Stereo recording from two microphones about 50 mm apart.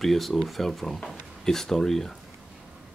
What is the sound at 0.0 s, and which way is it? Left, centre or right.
Speech, centre.